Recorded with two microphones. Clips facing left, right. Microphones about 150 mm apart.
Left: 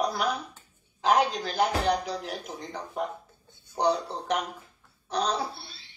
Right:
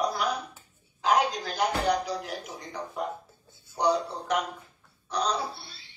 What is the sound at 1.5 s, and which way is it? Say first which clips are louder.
Speech: left 1 dB; 55° left (ahead or behind).